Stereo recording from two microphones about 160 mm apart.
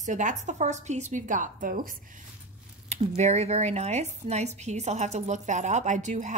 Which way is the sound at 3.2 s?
40° right (ahead or behind).